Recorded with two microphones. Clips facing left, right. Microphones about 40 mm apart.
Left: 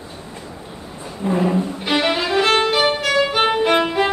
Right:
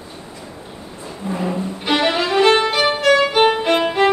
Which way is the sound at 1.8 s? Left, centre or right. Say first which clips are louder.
Right 4 dB; centre.